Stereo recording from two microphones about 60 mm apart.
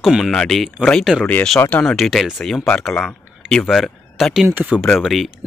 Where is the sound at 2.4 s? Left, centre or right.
Centre.